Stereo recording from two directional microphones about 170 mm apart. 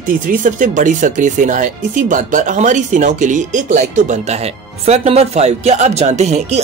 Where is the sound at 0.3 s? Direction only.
50° right (ahead or behind).